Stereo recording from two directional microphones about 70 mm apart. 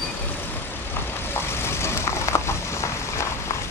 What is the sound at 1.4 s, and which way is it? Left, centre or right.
Vehicle, left.